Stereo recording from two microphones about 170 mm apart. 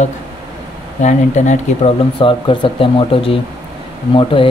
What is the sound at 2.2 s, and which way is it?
Speech, 30° left (ahead or behind).